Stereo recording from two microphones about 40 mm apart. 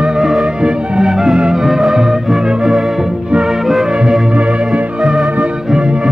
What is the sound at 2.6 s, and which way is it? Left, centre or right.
Music, centre.